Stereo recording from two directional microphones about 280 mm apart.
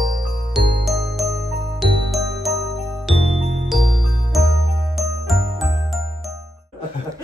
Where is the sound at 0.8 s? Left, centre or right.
Centre.